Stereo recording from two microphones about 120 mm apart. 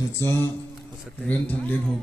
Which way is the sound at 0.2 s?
20° left (ahead or behind).